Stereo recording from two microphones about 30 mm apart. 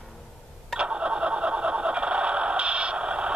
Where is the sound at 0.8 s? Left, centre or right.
Right.